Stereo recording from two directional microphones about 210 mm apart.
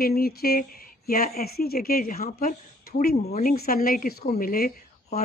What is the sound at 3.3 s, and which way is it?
Speech, 40° left (ahead or behind).